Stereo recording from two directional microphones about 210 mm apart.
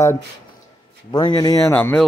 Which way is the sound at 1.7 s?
10° left (ahead or behind).